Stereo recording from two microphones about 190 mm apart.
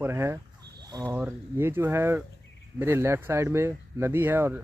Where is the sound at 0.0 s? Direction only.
15° right (ahead or behind).